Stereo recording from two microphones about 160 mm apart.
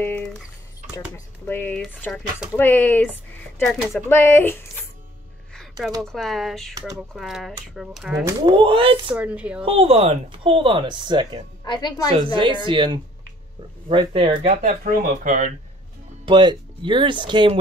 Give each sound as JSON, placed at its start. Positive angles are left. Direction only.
{"t": 0.0, "sound": "squish", "side_deg": 15}
{"t": 1.1, "sound": "speech", "side_deg": 15}
{"t": 5.5, "sound": "a sound", "side_deg": 5}
{"t": 6.0, "sound": "speech", "side_deg": 0}
{"t": 8.3, "sound": "speech", "side_deg": -25}
{"t": 9.1, "sound": "speech", "side_deg": -10}
{"t": 9.7, "sound": "speech", "side_deg": -35}
{"t": 11.6, "sound": "a woman's voice", "side_deg": 25}
{"t": 12.4, "sound": "speech", "side_deg": -30}
{"t": 14.4, "sound": "speech", "side_deg": -45}
{"t": 14.8, "sound": "speech", "side_deg": -60}
{"t": 16.3, "sound": "speech", "side_deg": -30}